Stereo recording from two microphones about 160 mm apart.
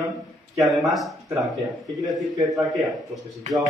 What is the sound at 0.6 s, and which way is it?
Speech, centre (ahead or behind).